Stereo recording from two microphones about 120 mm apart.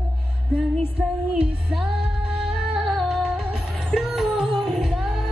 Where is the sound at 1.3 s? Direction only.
10° right (ahead or behind).